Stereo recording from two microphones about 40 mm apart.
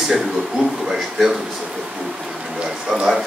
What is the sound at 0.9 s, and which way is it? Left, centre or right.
Speech, centre.